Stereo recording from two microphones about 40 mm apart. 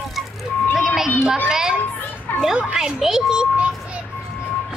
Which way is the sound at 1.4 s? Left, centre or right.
Centre.